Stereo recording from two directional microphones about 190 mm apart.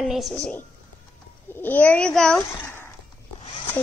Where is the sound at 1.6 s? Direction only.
10° left (ahead or behind).